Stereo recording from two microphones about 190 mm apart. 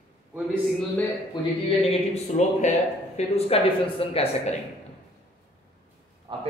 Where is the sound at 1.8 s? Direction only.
35° left (ahead or behind).